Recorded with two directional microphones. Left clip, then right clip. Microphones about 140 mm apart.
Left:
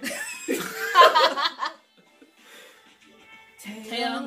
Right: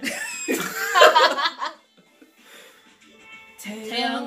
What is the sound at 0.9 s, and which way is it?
Laughter, 30° left (ahead or behind).